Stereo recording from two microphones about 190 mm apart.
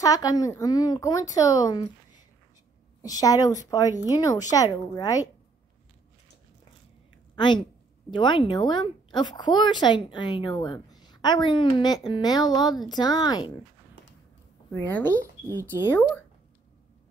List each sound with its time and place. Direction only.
0.0 s speech: 20° left (ahead or behind)
3.0 s speech: 20° left (ahead or behind)
7.3 s a woman's voice: 25° left (ahead or behind)
14.7 s speech: 10° left (ahead or behind)